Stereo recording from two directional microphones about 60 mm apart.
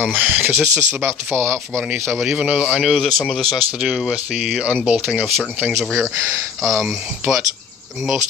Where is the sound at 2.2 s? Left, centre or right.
Centre.